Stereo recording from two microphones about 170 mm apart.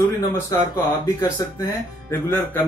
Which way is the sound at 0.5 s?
20° left (ahead or behind).